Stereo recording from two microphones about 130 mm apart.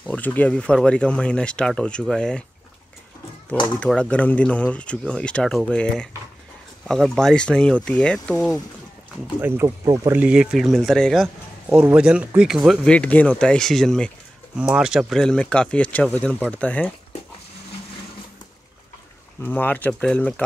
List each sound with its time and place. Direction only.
0.0 s speech: 10° left (ahead or behind)
3.8 s speech: 10° left (ahead or behind)
9.4 s speech: 15° right (ahead or behind)
9.7 s speech: 30° right (ahead or behind)
10.1 s speech: 10° right (ahead or behind)
11.9 s speech: 10° right (ahead or behind)
12.9 s speech: 10° left (ahead or behind)
14.6 s speech: 5° right (ahead or behind); by 16.8 s 10° left (ahead or behind)
19.4 s speech: 15° left (ahead or behind)